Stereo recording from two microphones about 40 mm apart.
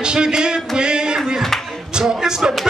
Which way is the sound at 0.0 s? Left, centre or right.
Right.